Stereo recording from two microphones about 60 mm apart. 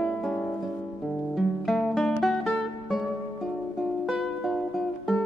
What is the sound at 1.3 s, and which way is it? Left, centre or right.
Music, centre.